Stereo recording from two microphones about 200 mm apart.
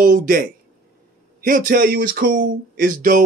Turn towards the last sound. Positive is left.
turn(degrees=-45)  # may be behind; listen again after turning